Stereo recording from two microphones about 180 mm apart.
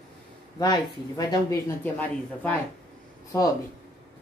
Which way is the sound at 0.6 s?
20° left (ahead or behind).